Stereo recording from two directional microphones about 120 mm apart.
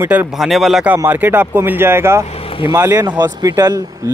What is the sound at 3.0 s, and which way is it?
Speech, 35° right (ahead or behind).